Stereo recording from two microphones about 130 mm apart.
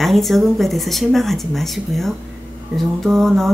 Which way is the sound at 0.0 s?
Centre (ahead or behind).